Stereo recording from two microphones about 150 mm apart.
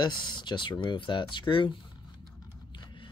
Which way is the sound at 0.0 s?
30° left (ahead or behind).